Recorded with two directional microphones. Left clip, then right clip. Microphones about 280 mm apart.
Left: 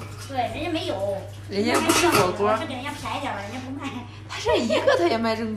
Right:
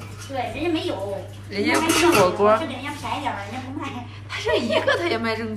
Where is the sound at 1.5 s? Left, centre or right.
Centre.